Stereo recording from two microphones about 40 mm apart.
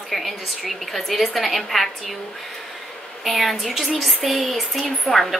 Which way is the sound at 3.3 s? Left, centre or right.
Centre.